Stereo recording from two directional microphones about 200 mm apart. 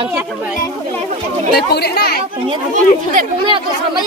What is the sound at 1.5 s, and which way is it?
Speech, 55° left (ahead or behind).